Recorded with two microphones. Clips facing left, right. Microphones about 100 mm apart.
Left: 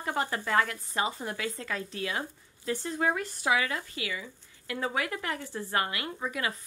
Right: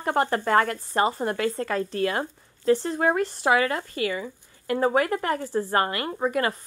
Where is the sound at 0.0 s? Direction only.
55° right (ahead or behind).